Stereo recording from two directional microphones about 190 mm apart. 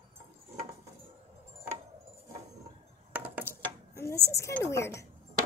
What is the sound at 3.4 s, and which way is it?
Dishes, 15° left (ahead or behind).